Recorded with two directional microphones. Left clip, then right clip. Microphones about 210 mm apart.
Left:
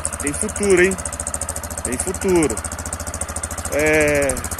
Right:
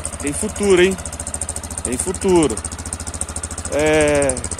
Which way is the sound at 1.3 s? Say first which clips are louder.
Left 2 dB; 5° left (ahead or behind).